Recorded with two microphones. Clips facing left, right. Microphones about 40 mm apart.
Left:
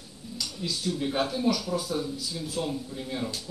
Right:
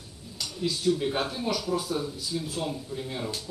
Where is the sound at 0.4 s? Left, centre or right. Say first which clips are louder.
Right 3 dB; right.